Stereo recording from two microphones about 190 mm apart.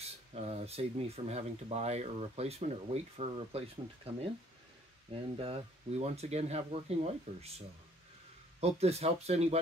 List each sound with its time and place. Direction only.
0.0 s speech: 35° right (ahead or behind)
5.1 s speech: 30° right (ahead or behind)